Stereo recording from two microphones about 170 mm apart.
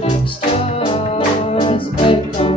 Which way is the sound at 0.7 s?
30° left (ahead or behind).